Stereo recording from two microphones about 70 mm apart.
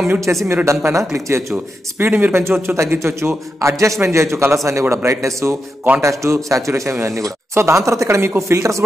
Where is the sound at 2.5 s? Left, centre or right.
Right.